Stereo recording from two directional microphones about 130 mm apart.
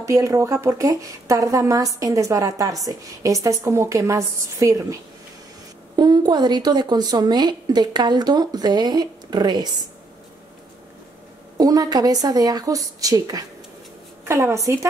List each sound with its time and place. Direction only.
0.0 s a woman's voice: 25° right (ahead or behind)
5.9 s a woman's voice: 35° right (ahead or behind)
11.5 s a woman's voice: 30° right (ahead or behind)